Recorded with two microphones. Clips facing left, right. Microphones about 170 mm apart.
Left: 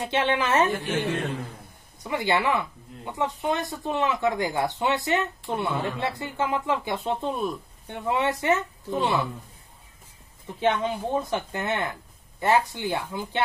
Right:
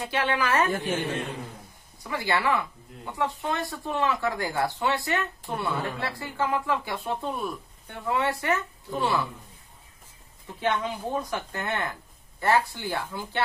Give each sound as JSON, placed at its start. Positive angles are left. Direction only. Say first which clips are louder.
{"t": 0.0, "sound": "speech", "louder": "left 2 dB", "side_deg": 25}
{"t": 2.0, "sound": "speech", "louder": "left 2 dB", "side_deg": 20}
{"t": 10.6, "sound": "speech", "louder": "left 3 dB", "side_deg": 25}